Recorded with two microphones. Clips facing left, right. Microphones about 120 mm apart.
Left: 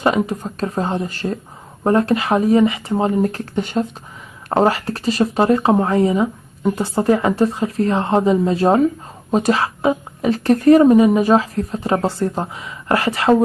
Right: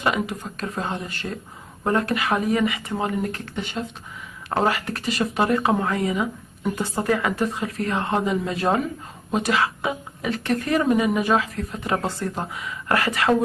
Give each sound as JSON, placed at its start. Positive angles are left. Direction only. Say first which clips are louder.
{"t": 0.0, "sound": "speech", "louder": "left 6 dB", "side_deg": 35}
{"t": 4.5, "sound": "speech", "louder": "left 6 dB", "side_deg": 30}